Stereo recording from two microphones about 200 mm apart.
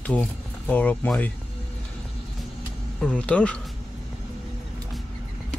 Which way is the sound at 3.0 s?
5° left (ahead or behind).